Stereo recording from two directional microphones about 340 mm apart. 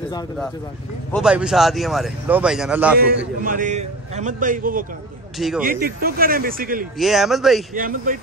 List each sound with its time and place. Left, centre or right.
1.1 s speech: centre
3.0 s a man's voice: right
7.0 s speech: centre
7.7 s a man's voice: right